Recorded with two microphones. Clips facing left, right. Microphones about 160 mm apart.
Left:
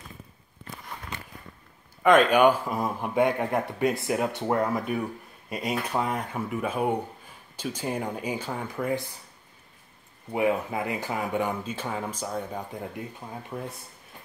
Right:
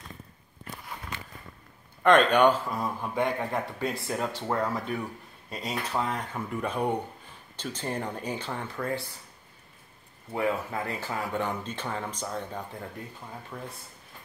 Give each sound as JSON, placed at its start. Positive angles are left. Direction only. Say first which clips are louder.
{"t": 2.0, "sound": "speech", "louder": "left 2 dB", "side_deg": 5}
{"t": 10.3, "sound": "speech", "louder": "left 3 dB", "side_deg": 15}